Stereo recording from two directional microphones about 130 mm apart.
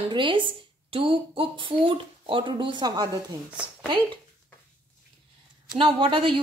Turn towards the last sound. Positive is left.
turn(degrees=-40)  # may be behind; listen again after turning